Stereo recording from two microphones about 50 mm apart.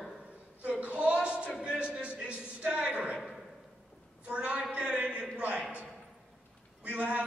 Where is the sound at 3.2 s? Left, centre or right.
Centre.